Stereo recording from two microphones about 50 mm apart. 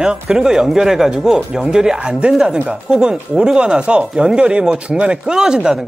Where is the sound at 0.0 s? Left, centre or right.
Centre.